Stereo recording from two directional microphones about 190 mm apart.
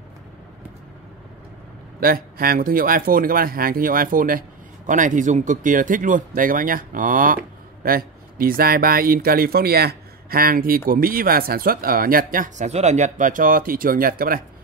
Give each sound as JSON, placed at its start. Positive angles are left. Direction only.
{"t": 2.0, "sound": "speech", "side_deg": -50}